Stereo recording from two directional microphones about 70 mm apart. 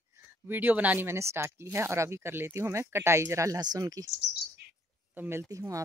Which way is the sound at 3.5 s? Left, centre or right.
Right.